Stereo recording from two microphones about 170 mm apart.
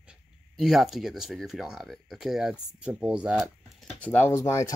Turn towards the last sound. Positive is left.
turn(degrees=15)  # may be behind; listen again after turning